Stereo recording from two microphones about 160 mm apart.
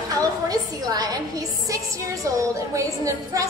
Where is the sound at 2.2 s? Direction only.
20° right (ahead or behind).